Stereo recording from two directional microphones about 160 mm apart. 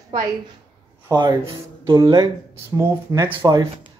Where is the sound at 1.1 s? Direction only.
30° right (ahead or behind).